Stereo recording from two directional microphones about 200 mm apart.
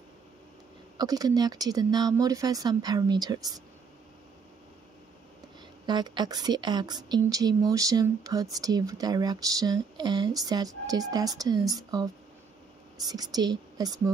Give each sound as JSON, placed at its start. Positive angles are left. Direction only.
{"t": 0.9, "sound": "a woman's voice", "side_deg": -20}
{"t": 5.9, "sound": "a woman's voice", "side_deg": -20}